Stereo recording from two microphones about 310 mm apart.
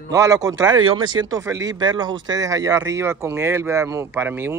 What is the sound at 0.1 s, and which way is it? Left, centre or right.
Speech, centre.